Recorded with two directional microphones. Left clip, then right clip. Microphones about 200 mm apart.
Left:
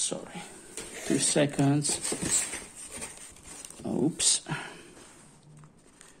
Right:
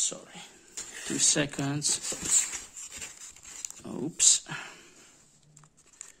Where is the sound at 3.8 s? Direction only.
15° right (ahead or behind).